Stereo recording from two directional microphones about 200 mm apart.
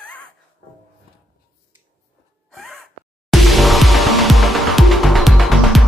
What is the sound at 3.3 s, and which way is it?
Music, centre (ahead or behind).